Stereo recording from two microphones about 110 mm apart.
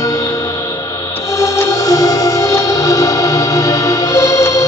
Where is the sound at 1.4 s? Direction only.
30° left (ahead or behind).